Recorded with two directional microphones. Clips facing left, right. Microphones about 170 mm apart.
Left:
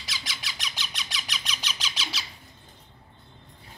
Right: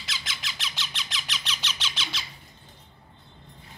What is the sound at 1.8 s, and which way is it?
Squawk, 35° left (ahead or behind).